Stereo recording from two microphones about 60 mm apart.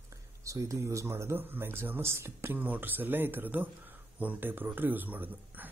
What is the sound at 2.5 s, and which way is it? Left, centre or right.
Speech, right.